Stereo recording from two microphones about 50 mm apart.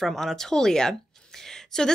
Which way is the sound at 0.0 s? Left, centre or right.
Centre.